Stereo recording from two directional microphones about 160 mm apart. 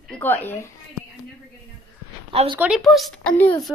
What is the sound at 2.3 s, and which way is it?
Speech, 35° right (ahead or behind).